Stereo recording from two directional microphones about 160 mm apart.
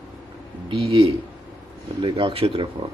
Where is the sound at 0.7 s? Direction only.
30° right (ahead or behind).